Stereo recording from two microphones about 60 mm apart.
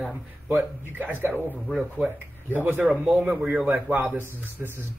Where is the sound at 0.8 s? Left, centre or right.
Right.